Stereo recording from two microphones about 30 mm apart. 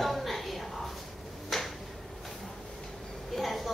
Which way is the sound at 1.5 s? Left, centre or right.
Centre.